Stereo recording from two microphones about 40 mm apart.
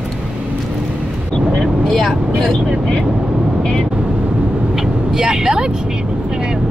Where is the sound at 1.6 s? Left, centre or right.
Centre.